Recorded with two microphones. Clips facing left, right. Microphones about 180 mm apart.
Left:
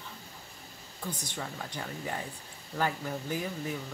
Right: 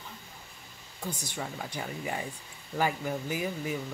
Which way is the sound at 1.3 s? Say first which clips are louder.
Right 2 dB; 10° right (ahead or behind).